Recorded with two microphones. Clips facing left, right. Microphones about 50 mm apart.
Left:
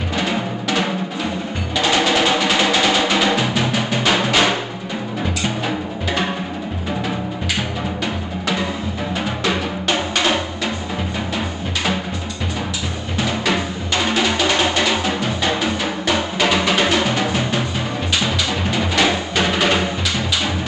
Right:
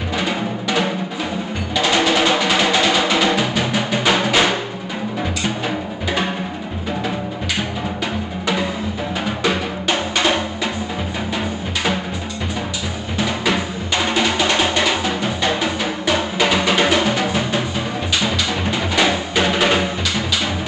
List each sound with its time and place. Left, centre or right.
0.2 s music: centre
9.4 s music: centre
13.2 s music: centre